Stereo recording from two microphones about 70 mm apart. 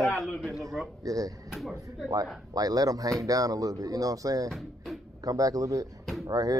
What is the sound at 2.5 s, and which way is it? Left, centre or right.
Speech, right.